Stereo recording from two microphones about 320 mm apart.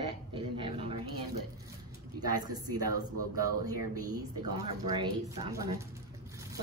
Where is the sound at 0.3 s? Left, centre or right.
Centre.